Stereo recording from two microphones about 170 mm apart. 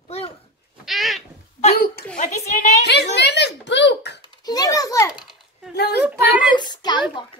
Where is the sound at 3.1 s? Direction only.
80° left.